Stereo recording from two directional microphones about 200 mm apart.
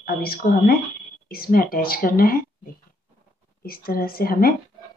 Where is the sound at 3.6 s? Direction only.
50° left (ahead or behind).